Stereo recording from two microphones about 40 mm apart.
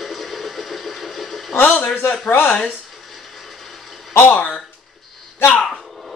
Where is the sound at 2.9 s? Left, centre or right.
Centre.